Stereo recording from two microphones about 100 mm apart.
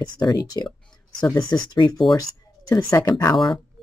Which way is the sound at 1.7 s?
40° left (ahead or behind).